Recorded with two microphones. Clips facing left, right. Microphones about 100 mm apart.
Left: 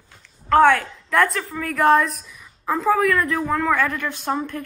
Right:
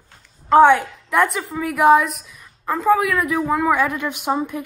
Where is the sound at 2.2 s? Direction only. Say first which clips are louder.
Even; centre (ahead or behind).